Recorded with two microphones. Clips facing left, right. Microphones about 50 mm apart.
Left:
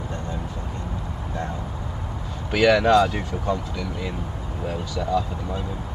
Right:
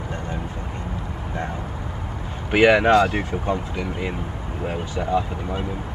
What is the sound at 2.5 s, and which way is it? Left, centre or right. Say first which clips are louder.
Speech: right 2 dB; right.